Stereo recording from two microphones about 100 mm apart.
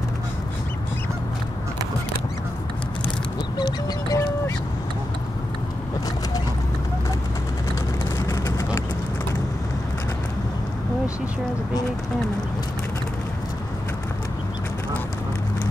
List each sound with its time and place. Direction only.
3.5 s duck: 40° left (ahead or behind)
8.2 s vehicle: 35° left (ahead or behind)